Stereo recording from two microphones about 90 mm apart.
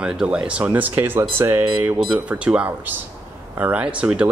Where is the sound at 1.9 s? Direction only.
5° right (ahead or behind).